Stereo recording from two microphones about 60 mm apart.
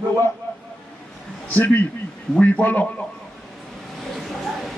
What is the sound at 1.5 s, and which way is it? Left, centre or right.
A man's voice, left.